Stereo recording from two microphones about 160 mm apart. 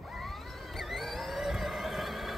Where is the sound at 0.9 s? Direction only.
Centre (ahead or behind).